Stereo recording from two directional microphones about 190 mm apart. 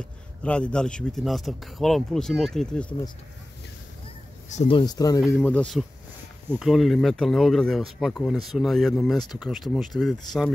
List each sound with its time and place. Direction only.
0.4 s speech: 5° left (ahead or behind)
4.5 s speech: 35° left (ahead or behind)
4.7 s speech: 20° left (ahead or behind)
5.2 s speech: 10° left (ahead or behind)